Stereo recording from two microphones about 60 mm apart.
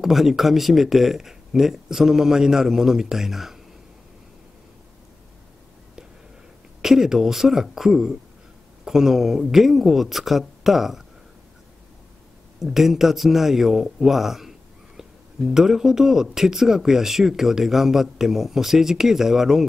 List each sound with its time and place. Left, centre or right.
0.0 s speech: centre
6.8 s speech: centre
12.5 s speech: centre